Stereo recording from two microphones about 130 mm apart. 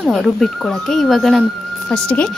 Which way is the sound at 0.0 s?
Centre (ahead or behind).